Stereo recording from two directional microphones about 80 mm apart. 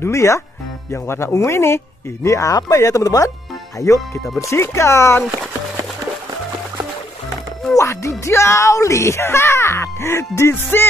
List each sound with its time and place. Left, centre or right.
0.0 s speech: left
7.7 s speech: left